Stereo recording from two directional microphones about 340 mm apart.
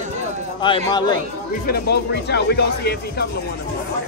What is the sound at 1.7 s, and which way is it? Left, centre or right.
Speech, left.